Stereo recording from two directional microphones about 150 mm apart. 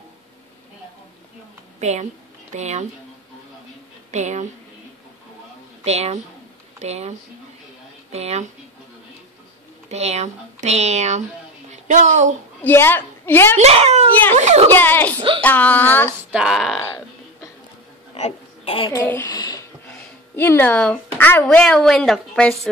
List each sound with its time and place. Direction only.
1.8 s a woman's voice: 50° right (ahead or behind)
4.1 s a woman's voice: 50° right (ahead or behind)
5.9 s a woman's voice: 45° right (ahead or behind)
9.8 s a woman's voice: 45° right (ahead or behind)
12.6 s a woman's voice: 15° left (ahead or behind)
13.6 s a woman's voice: 45° right (ahead or behind)
14.7 s speech: 15° left (ahead or behind)
15.1 s a sound: 35° right (ahead or behind)
15.4 s speech: 10° left (ahead or behind)
16.3 s speech: 5° right (ahead or behind)
18.1 s a sound: 45° left (ahead or behind)
18.9 s a sound: 15° left (ahead or behind)
20.3 s speech: 15° left (ahead or behind)